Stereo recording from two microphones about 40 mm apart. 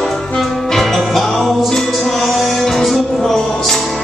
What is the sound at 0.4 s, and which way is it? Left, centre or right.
Music, centre.